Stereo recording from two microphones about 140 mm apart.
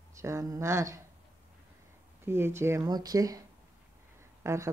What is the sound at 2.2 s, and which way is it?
Speech, 15° right (ahead or behind).